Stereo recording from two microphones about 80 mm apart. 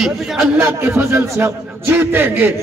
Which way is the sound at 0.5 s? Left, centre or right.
Right.